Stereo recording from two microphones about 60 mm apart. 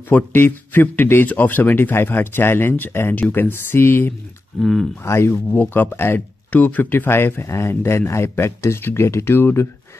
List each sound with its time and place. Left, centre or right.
0.1 s a man's voice: left
4.6 s speech: centre
5.0 s a man's voice: left